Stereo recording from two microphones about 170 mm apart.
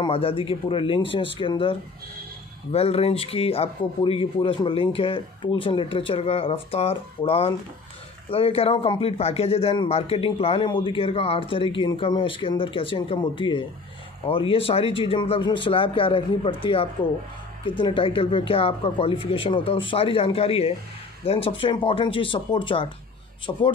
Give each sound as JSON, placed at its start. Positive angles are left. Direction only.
{"t": 0.0, "sound": "a man's voice", "side_deg": 30}